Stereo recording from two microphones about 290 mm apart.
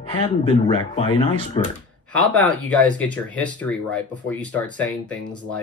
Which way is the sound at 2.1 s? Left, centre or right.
Centre.